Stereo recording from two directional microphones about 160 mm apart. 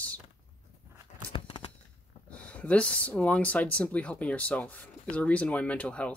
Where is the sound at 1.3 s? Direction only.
35° left (ahead or behind).